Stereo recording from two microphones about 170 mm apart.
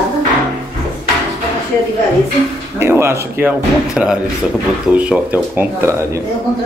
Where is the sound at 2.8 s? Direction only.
15° right (ahead or behind).